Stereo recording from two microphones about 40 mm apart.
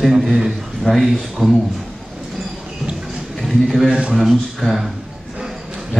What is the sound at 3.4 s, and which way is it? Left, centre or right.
A man's voice, centre.